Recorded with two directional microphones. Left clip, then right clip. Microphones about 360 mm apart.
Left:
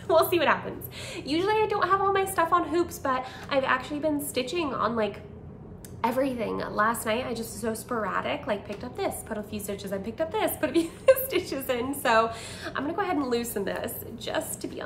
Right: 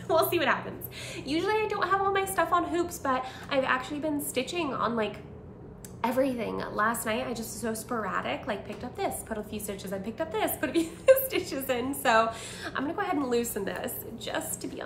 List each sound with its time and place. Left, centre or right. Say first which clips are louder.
0.1 s a woman's voice: left 3 dB; centre